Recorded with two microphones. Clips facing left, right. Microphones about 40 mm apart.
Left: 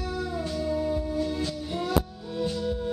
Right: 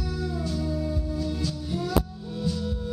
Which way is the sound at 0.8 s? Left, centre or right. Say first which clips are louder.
Left 3 dB; left.